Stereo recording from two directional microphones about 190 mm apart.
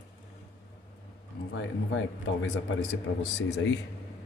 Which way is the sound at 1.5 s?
85° left.